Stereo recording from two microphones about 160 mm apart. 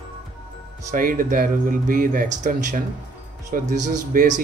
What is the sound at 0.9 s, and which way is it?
Speech, 60° right (ahead or behind).